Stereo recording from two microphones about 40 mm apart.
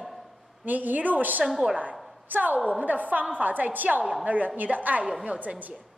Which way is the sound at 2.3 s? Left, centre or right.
Right.